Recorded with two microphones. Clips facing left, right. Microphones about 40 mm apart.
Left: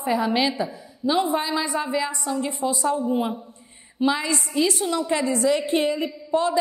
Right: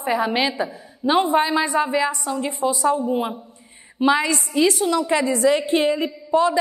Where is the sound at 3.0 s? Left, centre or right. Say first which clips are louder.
Right 1 dB; right.